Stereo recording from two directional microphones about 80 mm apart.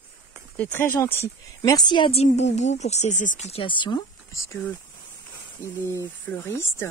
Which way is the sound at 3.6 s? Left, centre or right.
Left.